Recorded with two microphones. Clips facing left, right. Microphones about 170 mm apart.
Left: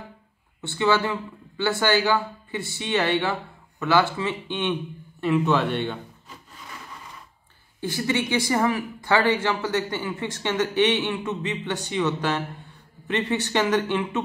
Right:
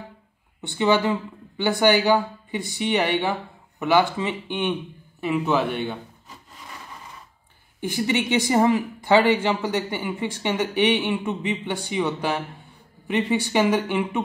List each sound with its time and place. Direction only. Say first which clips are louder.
0.6 s speech: right 2 dB; 15° right (ahead or behind)
7.8 s speech: right 2 dB; 15° right (ahead or behind)